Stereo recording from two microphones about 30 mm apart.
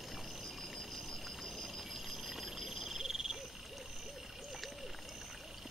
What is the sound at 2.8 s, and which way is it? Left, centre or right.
Owl, centre.